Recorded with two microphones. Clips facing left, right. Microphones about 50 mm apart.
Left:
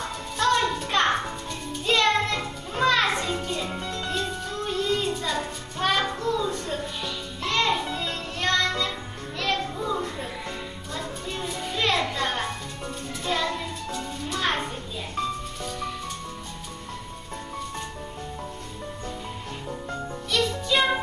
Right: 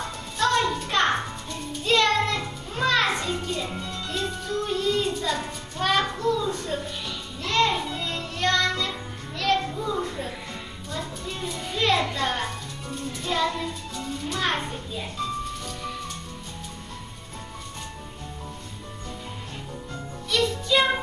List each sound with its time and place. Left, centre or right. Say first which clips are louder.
0.4 s music: even; centre
7.4 s music: right 2 dB; centre
7.7 s music: left 1 dB; centre
20.2 s music: right 1 dB; centre